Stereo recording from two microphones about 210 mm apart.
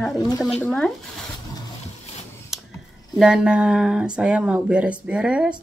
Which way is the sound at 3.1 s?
5° right (ahead or behind).